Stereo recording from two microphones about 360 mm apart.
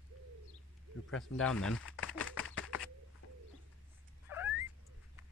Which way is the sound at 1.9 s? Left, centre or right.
Left.